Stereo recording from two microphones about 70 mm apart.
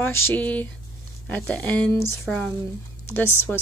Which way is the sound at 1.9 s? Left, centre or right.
Left.